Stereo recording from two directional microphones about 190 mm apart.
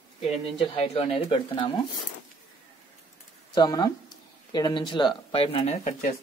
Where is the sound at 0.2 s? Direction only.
30° left (ahead or behind).